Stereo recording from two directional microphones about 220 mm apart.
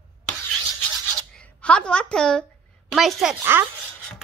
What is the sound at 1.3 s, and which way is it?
A woman's voice, 5° left (ahead or behind).